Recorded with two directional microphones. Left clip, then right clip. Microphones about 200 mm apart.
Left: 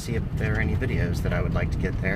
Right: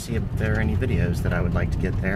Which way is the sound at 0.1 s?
10° right (ahead or behind).